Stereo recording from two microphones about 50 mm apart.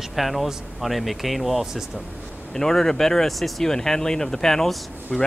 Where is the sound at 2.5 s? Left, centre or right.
Centre.